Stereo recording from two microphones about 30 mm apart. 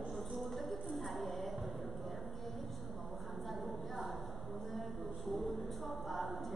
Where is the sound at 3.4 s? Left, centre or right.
Centre.